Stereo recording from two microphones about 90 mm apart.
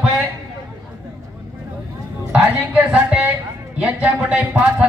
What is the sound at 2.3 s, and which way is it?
Speech, 15° right (ahead or behind).